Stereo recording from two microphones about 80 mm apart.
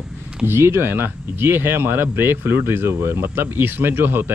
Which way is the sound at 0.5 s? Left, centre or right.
Right.